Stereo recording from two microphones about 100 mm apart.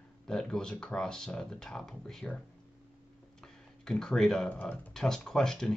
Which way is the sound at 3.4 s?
5° left (ahead or behind).